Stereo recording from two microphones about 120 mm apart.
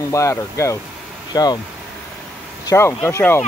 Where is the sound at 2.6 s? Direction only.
25° left (ahead or behind).